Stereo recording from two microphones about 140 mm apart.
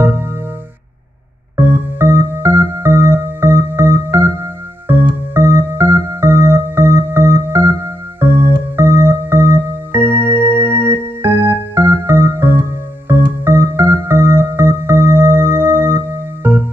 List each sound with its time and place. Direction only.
1.6 s music: 15° right (ahead or behind)